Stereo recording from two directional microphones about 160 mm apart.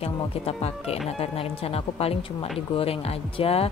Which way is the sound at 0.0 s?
40° left (ahead or behind).